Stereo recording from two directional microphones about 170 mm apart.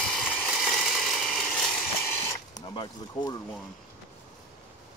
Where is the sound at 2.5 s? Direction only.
25° left (ahead or behind).